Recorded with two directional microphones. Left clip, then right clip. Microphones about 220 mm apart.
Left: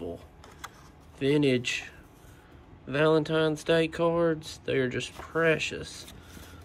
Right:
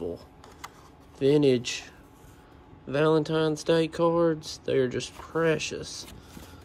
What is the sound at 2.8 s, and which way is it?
Speech, 15° right (ahead or behind).